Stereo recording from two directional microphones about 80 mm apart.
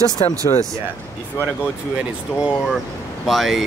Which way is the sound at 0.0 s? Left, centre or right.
Right.